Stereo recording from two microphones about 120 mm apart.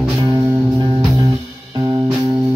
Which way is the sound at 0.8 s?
40° right (ahead or behind).